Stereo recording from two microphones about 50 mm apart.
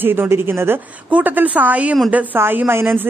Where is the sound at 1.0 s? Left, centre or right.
Right.